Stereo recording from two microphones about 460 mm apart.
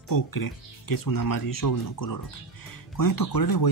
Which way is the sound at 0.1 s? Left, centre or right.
Left.